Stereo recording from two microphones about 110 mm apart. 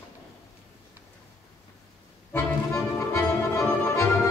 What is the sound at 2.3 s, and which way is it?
Accordion, 25° left (ahead or behind).